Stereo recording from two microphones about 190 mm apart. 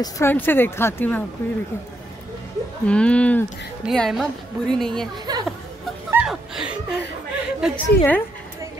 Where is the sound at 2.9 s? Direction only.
5° left (ahead or behind).